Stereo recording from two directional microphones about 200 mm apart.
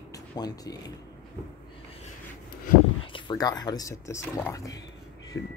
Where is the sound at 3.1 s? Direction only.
20° left (ahead or behind).